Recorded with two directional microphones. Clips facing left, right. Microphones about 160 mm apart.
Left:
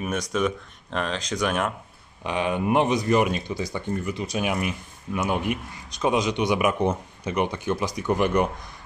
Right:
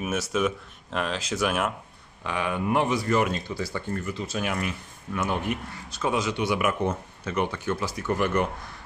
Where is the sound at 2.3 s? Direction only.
20° left (ahead or behind).